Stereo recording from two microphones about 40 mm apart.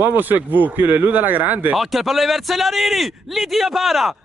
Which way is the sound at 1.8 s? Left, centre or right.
Centre.